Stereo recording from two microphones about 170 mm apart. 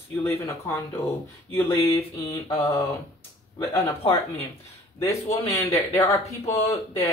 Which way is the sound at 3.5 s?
20° left (ahead or behind).